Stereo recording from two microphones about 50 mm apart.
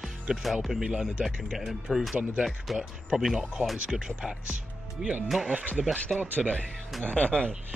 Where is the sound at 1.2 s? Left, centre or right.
Centre.